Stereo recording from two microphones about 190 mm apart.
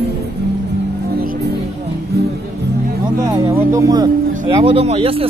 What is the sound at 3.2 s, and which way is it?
Speech, 15° right (ahead or behind).